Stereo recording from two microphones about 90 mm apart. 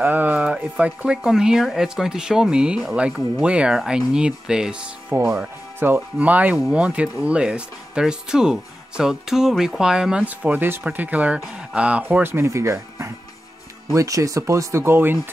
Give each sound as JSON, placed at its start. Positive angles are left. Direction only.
{"t": 0.0, "sound": "speech", "side_deg": -20}
{"t": 5.4, "sound": "speech", "side_deg": -25}